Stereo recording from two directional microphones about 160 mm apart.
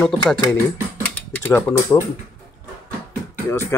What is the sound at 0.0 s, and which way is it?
Speech, 5° left (ahead or behind).